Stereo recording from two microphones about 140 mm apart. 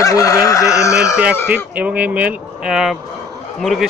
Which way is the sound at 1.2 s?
10° right (ahead or behind).